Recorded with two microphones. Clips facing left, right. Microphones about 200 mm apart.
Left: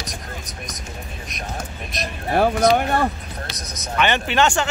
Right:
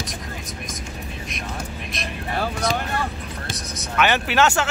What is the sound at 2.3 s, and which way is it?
Music, 55° left (ahead or behind).